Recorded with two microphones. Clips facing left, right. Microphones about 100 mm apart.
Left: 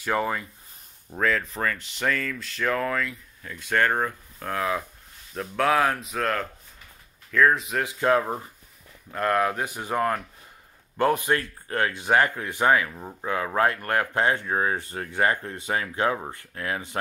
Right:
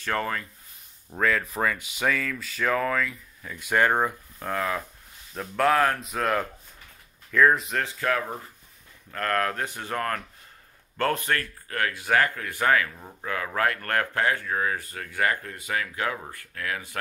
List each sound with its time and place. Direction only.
0.0 s speech: 15° left (ahead or behind)
1.1 s speech: centre (ahead or behind)
4.5 s speech: centre (ahead or behind)
7.8 s speech: 25° left (ahead or behind)